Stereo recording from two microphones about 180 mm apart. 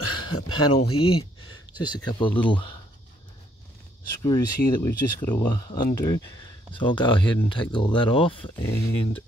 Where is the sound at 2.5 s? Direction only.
25° left (ahead or behind).